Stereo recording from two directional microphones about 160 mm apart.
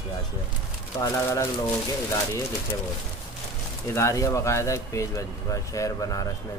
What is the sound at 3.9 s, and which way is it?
Speech, 20° left (ahead or behind).